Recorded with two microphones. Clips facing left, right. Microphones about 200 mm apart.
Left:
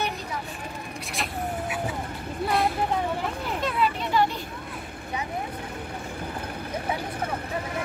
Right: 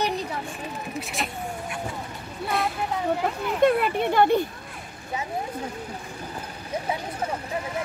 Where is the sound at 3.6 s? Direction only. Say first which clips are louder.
Right 8 dB; 55° right (ahead or behind).